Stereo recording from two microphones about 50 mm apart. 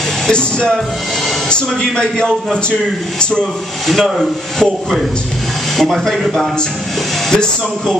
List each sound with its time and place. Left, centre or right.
0.3 s a man's voice: centre
3.8 s a man's voice: centre
5.8 s a man's voice: centre